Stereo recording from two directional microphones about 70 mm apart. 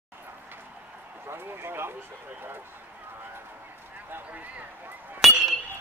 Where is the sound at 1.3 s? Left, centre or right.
Right.